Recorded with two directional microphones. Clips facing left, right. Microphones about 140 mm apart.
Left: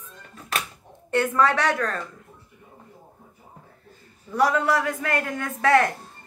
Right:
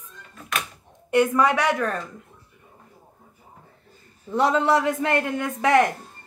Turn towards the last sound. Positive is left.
turn(degrees=-20)  # may be behind; listen again after turning